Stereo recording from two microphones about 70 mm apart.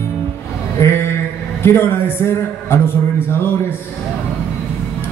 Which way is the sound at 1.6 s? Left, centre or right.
Left.